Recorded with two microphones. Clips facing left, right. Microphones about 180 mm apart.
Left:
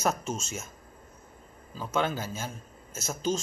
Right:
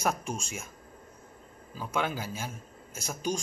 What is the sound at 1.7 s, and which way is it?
A man's voice, 10° right (ahead or behind).